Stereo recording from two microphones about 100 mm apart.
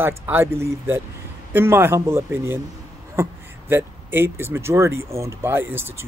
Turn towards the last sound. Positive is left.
turn(degrees=-20)  # may be behind; listen again after turning